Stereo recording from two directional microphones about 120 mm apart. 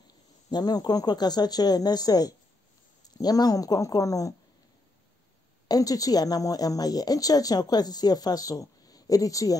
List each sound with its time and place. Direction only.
0.5 s speech: 35° left (ahead or behind)
5.7 s speech: 30° left (ahead or behind)